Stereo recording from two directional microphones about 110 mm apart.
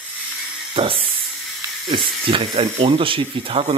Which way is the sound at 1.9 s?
50° right (ahead or behind).